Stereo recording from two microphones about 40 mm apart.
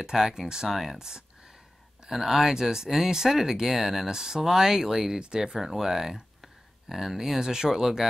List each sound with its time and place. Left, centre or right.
0.0 s speech: centre